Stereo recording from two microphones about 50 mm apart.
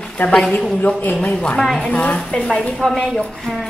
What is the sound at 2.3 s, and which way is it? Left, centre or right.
Speech, centre.